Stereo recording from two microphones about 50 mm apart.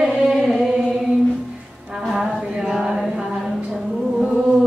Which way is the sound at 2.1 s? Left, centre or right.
Centre.